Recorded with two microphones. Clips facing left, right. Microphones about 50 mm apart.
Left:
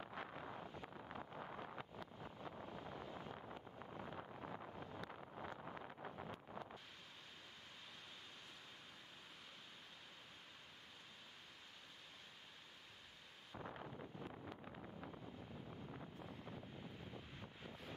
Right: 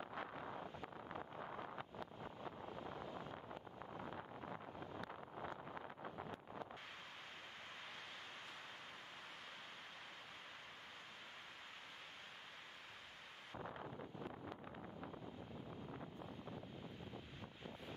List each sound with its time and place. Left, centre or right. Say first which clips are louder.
13.7 s wind noise: right 2 dB; right